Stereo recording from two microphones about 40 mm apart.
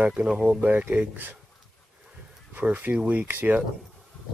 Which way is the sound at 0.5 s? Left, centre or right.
Right.